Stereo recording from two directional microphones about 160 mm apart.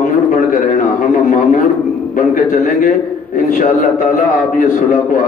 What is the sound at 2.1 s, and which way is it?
A man's voice, 55° left (ahead or behind).